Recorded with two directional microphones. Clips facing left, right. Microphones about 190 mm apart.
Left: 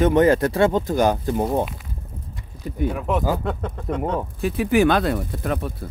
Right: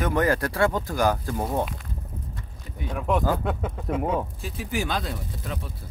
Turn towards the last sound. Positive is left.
turn(degrees=60)  # may be behind; listen again after turning